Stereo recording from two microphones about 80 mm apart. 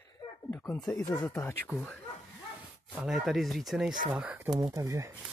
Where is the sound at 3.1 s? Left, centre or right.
Centre.